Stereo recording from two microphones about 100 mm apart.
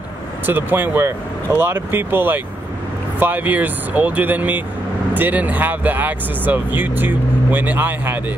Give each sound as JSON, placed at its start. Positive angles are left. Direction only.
{"t": 0.5, "sound": "speech", "side_deg": -20}